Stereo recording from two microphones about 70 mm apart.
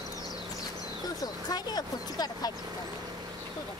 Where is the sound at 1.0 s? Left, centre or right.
Left.